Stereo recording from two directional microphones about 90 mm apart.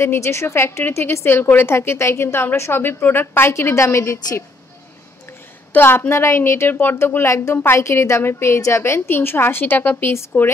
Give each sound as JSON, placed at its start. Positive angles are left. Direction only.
{"t": 0.0, "sound": "a woman's voice", "side_deg": 30}
{"t": 5.7, "sound": "a woman's voice", "side_deg": 25}